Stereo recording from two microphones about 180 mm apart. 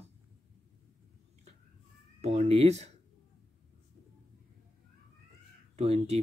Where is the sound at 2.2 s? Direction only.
35° right (ahead or behind).